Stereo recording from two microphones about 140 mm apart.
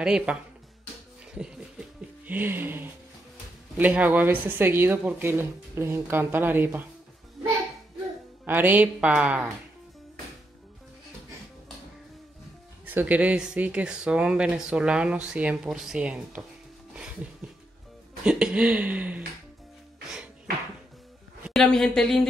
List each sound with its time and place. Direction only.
0.0 s speech: 5° right (ahead or behind)
1.3 s a sound: 5° right (ahead or behind)
3.7 s speech: 10° right (ahead or behind)
8.5 s speech: 15° right (ahead or behind)
12.8 s speech: 10° right (ahead or behind)
18.2 s a sound: 5° right (ahead or behind)
21.5 s a woman's voice: centre (ahead or behind)